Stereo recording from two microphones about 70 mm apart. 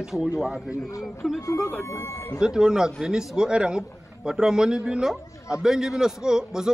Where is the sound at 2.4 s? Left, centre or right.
Centre.